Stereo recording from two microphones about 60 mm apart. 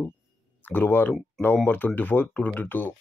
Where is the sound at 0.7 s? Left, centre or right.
Left.